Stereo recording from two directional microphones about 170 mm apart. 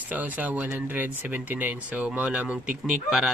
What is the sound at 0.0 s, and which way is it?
Speech, 10° right (ahead or behind).